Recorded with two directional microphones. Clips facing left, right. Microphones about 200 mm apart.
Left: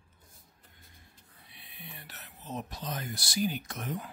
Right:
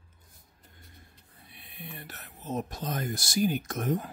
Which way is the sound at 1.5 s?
50° right (ahead or behind).